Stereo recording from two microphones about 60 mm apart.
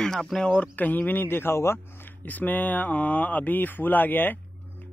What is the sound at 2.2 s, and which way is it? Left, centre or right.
Speech, left.